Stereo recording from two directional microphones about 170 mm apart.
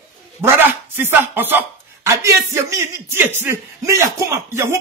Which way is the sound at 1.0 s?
10° right (ahead or behind).